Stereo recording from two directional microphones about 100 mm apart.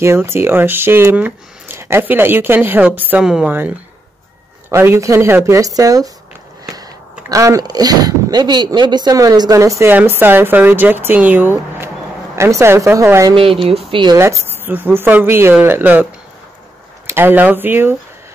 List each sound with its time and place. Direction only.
0.0 s speech: 25° right (ahead or behind); by 3.5 s 5° right (ahead or behind)
4.6 s speech: 25° right (ahead or behind)
9.8 s speech: 20° right (ahead or behind)
13.3 s speech: 65° right (ahead or behind)
14.1 s speech: 30° right (ahead or behind)